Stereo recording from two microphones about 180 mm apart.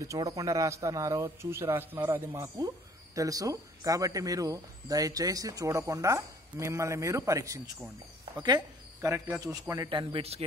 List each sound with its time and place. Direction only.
0.0 s speech: 20° right (ahead or behind)